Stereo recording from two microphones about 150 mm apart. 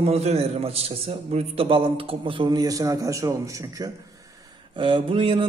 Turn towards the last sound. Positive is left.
turn(degrees=-35)  # may be behind; listen again after turning